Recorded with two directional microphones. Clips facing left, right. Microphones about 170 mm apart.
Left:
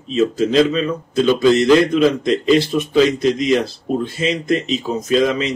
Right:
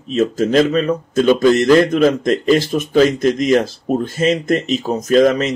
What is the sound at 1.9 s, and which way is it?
Speech, 45° right (ahead or behind).